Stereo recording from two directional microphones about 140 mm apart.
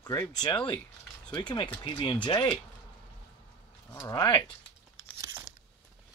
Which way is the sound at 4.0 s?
25° left (ahead or behind).